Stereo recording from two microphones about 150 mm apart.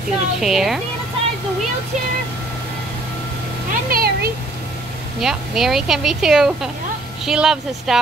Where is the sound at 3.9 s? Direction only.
90° right.